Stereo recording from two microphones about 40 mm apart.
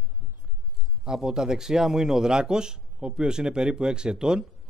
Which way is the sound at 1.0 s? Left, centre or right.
Centre.